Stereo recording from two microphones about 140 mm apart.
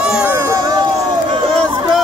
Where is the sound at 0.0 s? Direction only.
5° right (ahead or behind); by 0.8 s 25° right (ahead or behind).